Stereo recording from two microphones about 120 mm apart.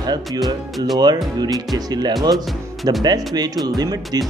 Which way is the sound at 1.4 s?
30° right (ahead or behind).